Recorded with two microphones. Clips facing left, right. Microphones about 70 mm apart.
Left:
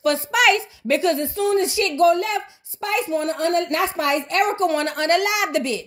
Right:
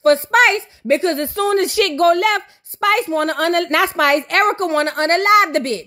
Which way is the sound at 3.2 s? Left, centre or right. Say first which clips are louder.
Right 4 dB; right.